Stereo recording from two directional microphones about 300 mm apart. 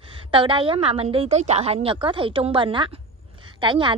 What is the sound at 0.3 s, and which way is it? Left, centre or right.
A woman's voice, centre.